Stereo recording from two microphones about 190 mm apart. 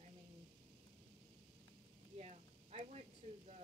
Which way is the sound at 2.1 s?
35° right (ahead or behind).